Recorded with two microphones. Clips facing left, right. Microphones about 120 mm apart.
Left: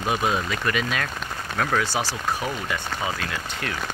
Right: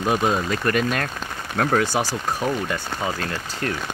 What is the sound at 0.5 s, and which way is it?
Speech, 45° right (ahead or behind).